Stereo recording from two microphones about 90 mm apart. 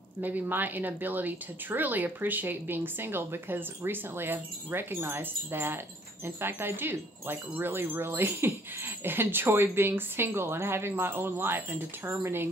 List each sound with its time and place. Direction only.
0.2 s wind chime: 20° right (ahead or behind)